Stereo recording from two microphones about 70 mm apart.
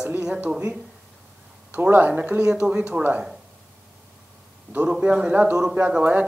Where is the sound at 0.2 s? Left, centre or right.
Centre.